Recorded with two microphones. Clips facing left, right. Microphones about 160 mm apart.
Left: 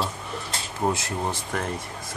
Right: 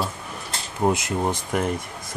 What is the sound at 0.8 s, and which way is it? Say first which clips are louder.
Speech: right 4 dB; 15° right (ahead or behind).